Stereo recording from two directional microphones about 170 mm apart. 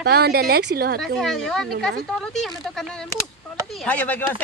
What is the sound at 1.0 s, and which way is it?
A woman's voice, centre (ahead or behind).